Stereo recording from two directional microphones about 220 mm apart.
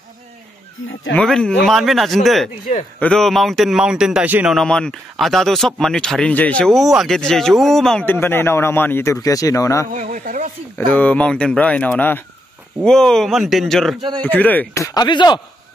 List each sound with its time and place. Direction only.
1.1 s speech: 5° left (ahead or behind)
9.9 s speech: 35° right (ahead or behind)
10.9 s speech: 5° left (ahead or behind)